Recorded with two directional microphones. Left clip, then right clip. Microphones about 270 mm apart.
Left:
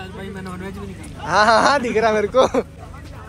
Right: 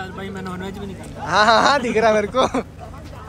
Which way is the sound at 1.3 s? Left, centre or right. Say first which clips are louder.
Even; centre.